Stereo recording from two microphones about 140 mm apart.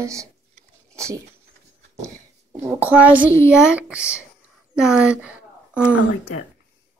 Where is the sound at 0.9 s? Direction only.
20° right (ahead or behind).